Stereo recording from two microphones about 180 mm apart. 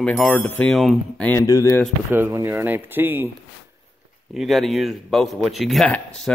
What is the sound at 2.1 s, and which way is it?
Speech, 15° right (ahead or behind).